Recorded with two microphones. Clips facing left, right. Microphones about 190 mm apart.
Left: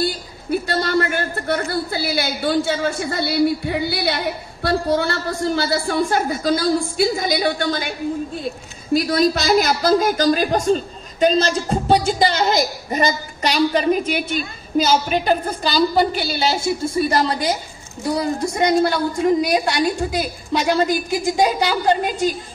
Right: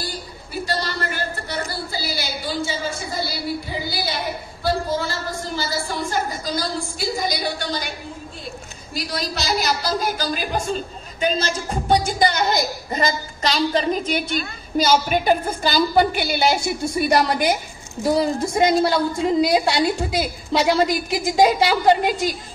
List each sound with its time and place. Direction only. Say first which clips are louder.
0.0 s a man's voice: left 8 dB; 60° left (ahead or behind)
8.9 s a man's voice: left 11 dB; 50° left (ahead or behind); by 14.4 s 10° left (ahead or behind)
14.9 s a woman's voice: right 2 dB; 5° right (ahead or behind)
18.1 s a woman's voice: right 1 dB; 25° right (ahead or behind)